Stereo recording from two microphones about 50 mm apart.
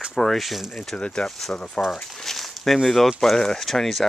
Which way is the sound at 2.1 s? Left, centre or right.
Centre.